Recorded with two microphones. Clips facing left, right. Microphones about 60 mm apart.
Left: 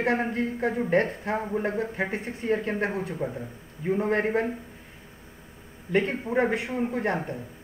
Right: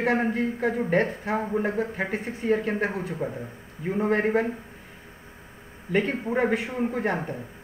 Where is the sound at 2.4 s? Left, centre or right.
Right.